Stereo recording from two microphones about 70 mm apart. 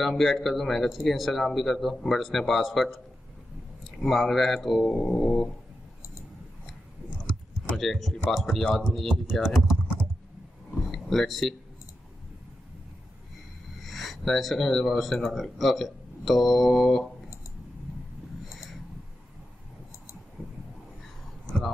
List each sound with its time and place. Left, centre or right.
0.0 s speech: centre
4.8 s a sound: centre
7.7 s speech: centre
10.9 s speech: centre
13.8 s speech: centre
18.5 s a sound: centre